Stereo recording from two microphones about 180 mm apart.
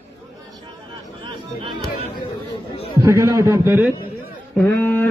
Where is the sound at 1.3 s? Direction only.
25° right (ahead or behind).